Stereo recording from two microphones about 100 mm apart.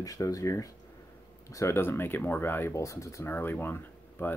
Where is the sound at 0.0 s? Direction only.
35° left (ahead or behind).